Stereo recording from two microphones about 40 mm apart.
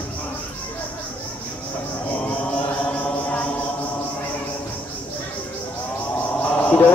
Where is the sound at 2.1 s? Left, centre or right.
Left.